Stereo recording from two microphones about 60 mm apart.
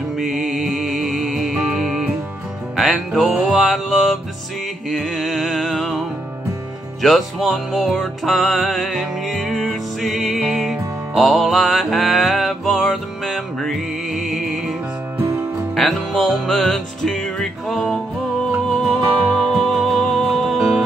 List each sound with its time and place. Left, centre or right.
0.2 s music: centre
15.2 s music: right
15.7 s music: centre
17.7 s music: centre
19.5 s music: centre